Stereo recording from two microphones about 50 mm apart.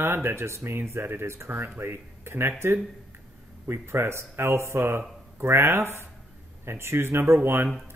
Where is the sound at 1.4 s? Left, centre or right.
Right.